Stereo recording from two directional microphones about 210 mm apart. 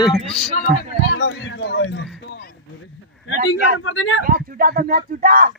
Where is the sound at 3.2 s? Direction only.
70° left (ahead or behind).